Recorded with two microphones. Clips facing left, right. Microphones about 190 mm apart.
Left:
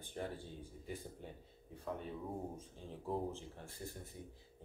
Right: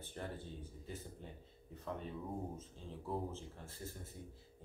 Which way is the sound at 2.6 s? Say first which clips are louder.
Even; 15° left (ahead or behind).